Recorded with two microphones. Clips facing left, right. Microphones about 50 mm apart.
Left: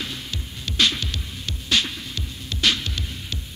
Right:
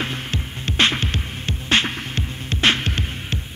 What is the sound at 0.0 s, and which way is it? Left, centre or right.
Music, right.